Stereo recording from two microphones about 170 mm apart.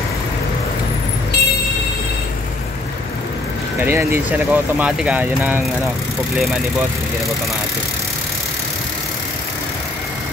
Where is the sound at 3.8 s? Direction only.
15° right (ahead or behind).